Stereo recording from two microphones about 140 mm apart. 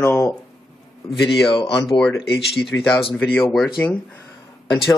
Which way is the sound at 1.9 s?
5° left (ahead or behind).